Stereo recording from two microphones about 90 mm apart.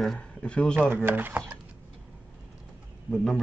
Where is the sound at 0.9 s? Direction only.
25° right (ahead or behind).